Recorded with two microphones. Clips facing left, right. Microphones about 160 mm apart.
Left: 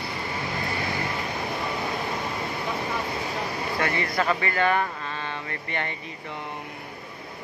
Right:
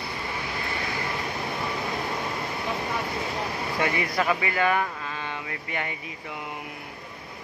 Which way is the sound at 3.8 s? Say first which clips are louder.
Even; 15° right (ahead or behind).